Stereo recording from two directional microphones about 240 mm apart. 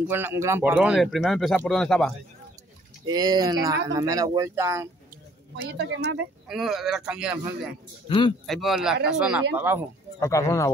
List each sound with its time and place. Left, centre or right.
0.1 s speech: centre
3.1 s speech: centre
5.6 s speech: right
6.5 s speech: centre
10.2 s speech: centre